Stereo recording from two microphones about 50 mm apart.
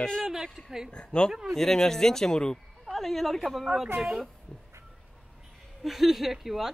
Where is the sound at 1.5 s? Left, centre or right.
Centre.